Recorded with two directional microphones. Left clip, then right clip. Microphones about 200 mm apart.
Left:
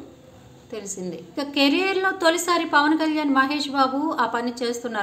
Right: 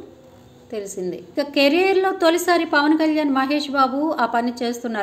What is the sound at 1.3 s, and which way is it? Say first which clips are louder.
A woman's voice: right 4 dB; 15° right (ahead or behind).